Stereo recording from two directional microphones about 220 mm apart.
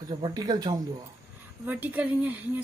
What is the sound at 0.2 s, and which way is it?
A woman's voice, 15° right (ahead or behind).